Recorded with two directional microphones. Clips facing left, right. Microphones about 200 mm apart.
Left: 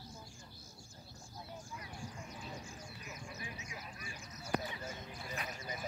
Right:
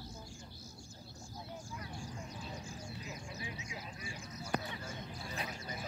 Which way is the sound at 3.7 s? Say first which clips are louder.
Right 3 dB; 30° right (ahead or behind).